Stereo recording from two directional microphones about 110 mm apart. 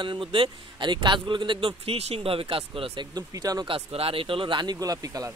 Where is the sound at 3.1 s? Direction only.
35° right (ahead or behind).